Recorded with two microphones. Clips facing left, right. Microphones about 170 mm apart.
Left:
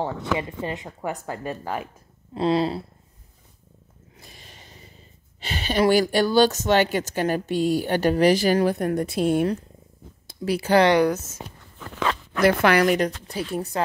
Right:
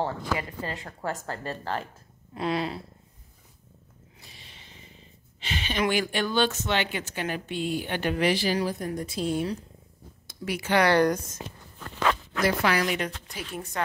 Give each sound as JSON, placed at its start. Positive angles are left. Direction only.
{"t": 0.0, "sound": "speech", "side_deg": 20}
{"t": 2.3, "sound": "speech", "side_deg": 30}
{"t": 4.2, "sound": "a sound", "side_deg": 45}
{"t": 5.4, "sound": "speech", "side_deg": 35}
{"t": 10.2, "sound": "speech", "side_deg": 35}
{"t": 10.9, "sound": "speech", "side_deg": 10}
{"t": 12.4, "sound": "a woman's voice", "side_deg": 60}
{"t": 12.9, "sound": "speech", "side_deg": 35}